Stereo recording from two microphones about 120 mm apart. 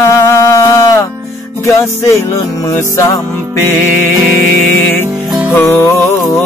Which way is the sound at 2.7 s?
25° left (ahead or behind).